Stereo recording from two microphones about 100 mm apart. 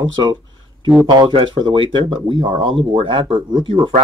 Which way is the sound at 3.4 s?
45° right (ahead or behind).